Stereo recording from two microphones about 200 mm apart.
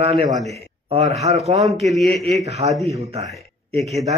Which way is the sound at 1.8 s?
Centre (ahead or behind).